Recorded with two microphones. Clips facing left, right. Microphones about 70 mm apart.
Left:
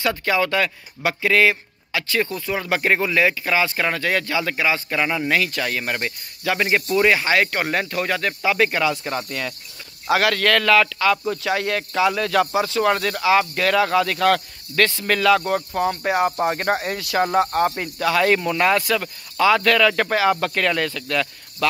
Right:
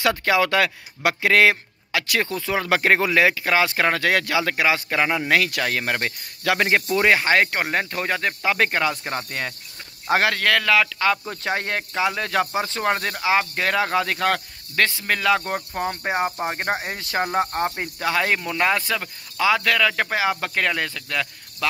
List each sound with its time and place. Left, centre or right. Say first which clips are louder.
0.1 s speech: right 1 dB; right
4.8 s speech: even; right
7.0 s speech: left 1 dB; right
7.6 s speech: left 1 dB; right
10.3 s speech: left 3 dB; centre
11.0 s speech: left 3 dB; right